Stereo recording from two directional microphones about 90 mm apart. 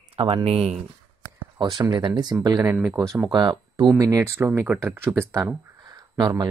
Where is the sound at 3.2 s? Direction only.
55° right (ahead or behind).